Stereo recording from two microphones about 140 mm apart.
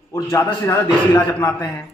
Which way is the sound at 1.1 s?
25° left (ahead or behind).